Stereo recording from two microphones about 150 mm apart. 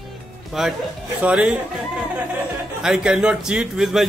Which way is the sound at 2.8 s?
5° right (ahead or behind).